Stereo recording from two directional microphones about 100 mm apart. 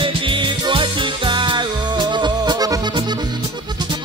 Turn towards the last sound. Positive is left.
turn(degrees=-50)  # may be behind; listen again after turning